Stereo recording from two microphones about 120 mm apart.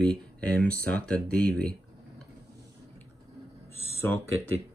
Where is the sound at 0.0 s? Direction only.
10° left (ahead or behind).